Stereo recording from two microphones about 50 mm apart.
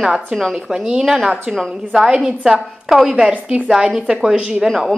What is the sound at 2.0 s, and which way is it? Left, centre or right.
A woman's voice, centre.